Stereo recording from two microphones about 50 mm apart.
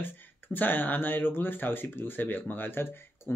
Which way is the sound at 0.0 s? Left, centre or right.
Left.